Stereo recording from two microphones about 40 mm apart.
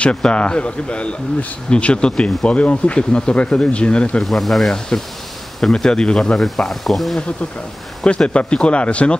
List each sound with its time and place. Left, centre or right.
0.0 s speech: left
4.2 s speech: centre
6.7 s speech: centre
8.3 s speech: left